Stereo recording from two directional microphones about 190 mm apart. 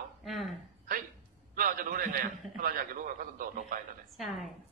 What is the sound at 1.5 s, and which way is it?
A man's voice, 45° right (ahead or behind).